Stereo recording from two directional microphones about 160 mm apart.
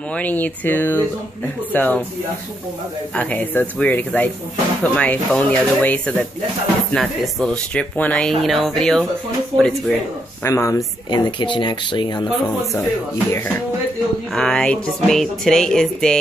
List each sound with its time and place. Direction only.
0.1 s speech: 10° left (ahead or behind)
3.2 s speech: 10° left (ahead or behind)
10.4 s speech: 20° left (ahead or behind)
14.3 s speech: 5° left (ahead or behind)